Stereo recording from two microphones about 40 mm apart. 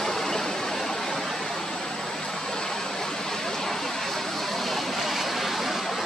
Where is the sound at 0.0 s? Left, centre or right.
Centre.